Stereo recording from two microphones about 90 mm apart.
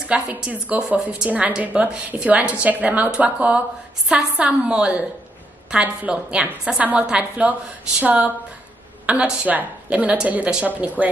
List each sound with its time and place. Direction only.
0.0 s a woman's voice: 10° right (ahead or behind)